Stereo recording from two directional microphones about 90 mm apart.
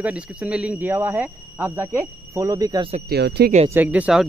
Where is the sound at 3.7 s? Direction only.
20° right (ahead or behind).